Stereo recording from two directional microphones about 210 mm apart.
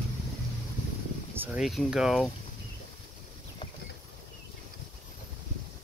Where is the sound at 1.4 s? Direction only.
5° right (ahead or behind).